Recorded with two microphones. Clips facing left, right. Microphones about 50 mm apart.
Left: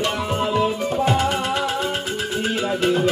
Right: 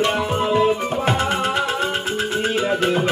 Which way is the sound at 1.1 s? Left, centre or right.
Right.